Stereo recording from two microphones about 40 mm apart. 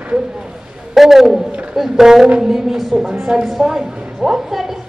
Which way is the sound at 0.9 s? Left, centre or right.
Centre.